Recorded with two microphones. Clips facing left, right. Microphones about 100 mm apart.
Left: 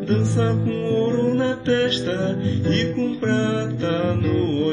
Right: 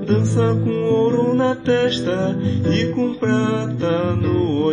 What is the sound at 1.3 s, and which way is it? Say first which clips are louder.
Music: right 3 dB; 25° right (ahead or behind).